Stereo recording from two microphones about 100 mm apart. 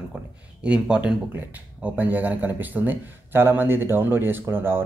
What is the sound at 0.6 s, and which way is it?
Speech, 10° right (ahead or behind).